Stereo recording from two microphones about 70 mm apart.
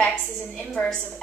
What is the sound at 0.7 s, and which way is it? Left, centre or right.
Speech, centre.